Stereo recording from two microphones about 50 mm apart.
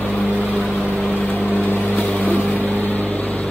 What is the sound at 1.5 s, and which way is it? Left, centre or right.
Vehicle, left.